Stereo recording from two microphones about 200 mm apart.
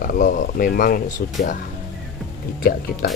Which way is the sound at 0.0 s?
45° left (ahead or behind).